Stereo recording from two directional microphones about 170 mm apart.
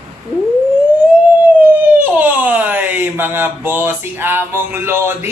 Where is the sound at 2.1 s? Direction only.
10° right (ahead or behind).